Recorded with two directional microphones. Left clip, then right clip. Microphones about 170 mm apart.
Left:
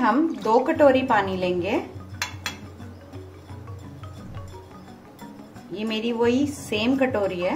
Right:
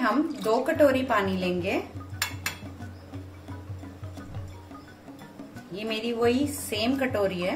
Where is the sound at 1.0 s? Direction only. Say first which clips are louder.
Left 4 dB; 60° left (ahead or behind).